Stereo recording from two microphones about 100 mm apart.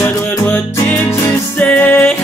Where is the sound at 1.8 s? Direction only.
15° left (ahead or behind).